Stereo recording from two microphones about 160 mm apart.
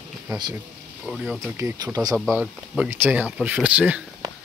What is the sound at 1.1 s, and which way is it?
Speech, centre (ahead or behind).